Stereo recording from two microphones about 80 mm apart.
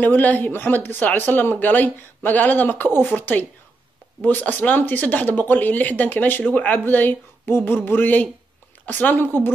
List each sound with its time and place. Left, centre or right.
0.0 s speech: left